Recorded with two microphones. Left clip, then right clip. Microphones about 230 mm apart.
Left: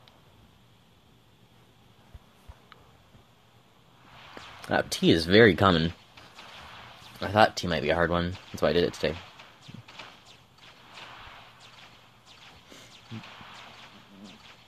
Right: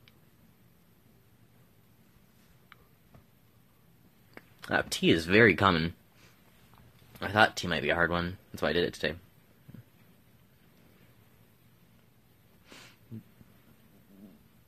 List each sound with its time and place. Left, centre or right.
4.6 s speech: centre
7.2 s speech: centre